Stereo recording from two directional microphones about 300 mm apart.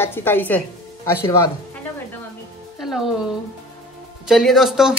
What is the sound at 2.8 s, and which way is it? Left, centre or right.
A woman's voice, centre.